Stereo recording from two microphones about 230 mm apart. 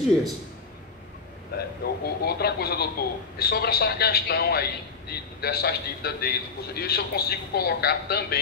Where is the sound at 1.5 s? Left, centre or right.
Left.